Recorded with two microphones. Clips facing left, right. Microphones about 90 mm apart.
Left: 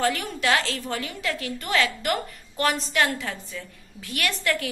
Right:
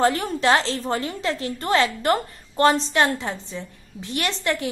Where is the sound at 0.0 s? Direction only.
30° right (ahead or behind).